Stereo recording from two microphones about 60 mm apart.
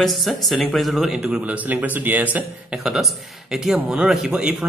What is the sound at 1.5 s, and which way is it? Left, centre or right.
Speech, right.